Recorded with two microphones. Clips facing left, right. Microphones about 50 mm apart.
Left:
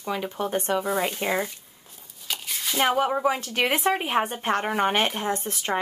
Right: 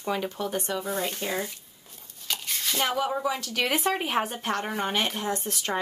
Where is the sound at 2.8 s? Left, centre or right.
Left.